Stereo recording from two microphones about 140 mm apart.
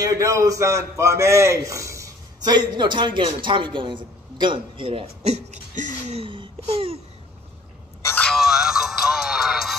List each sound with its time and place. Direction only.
0.0 s a man's voice: 25° right (ahead or behind); by 6.2 s 60° right (ahead or behind)
6.2 s a sound: 40° right (ahead or behind)
8.0 s music: 15° left (ahead or behind)
8.3 s music: centre (ahead or behind)